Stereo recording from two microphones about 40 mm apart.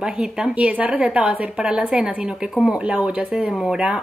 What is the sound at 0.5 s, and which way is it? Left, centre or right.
A woman's voice, right.